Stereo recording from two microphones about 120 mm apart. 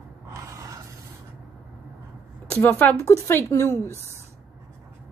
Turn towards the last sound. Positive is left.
turn(degrees=20)  # may be behind; listen again after turning